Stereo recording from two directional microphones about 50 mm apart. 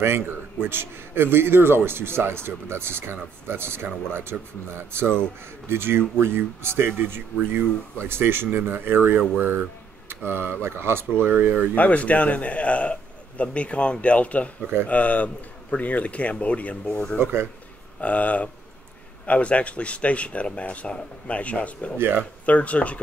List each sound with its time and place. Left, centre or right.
0.0 s a man's voice: right
11.2 s a man's voice: right
11.7 s a man's voice: left
17.2 s a man's voice: right
18.0 s a man's voice: left
21.9 s a man's voice: right
22.5 s a man's voice: left